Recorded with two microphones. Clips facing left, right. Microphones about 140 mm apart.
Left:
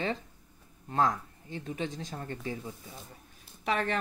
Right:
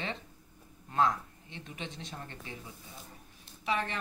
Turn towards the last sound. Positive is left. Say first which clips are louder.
# left 3 dB
turn(degrees=50)  # may be behind; listen again after turning